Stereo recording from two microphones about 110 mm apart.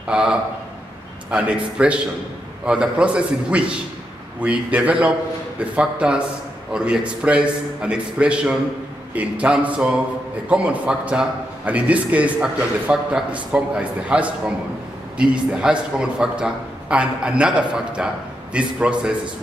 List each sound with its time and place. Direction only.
0.0 s a man's voice: 5° right (ahead or behind)